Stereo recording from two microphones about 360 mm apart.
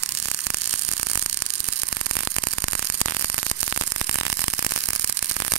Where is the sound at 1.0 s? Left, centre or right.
Right.